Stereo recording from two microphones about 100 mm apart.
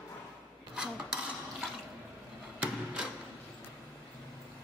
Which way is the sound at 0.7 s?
10° right (ahead or behind).